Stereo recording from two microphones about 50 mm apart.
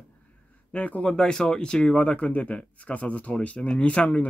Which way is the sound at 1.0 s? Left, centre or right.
Centre.